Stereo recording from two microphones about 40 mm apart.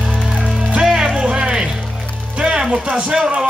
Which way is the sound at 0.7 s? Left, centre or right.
Centre.